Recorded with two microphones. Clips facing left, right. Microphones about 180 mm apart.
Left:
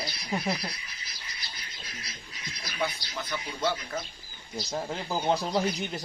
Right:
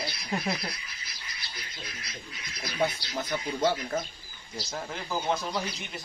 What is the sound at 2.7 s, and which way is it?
Speech, 40° right (ahead or behind).